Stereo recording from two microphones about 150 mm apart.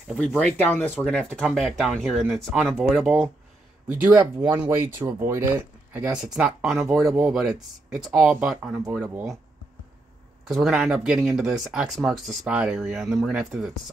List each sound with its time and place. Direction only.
0.2 s speech: 10° left (ahead or behind)
10.5 s speech: centre (ahead or behind)